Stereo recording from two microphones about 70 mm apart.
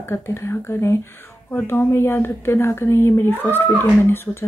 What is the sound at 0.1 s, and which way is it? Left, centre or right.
Speech, left.